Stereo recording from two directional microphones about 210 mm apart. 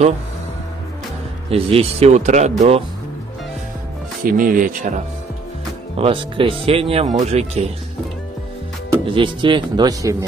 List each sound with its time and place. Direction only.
1.5 s speech: 30° right (ahead or behind)
4.2 s speech: 40° right (ahead or behind)
5.9 s speech: 25° right (ahead or behind)
9.0 s speech: 25° right (ahead or behind)